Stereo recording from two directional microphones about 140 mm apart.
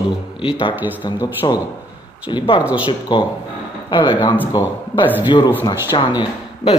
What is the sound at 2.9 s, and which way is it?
A man's voice, 35° left (ahead or behind).